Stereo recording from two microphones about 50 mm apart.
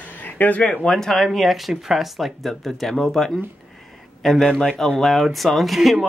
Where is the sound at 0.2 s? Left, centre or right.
Left.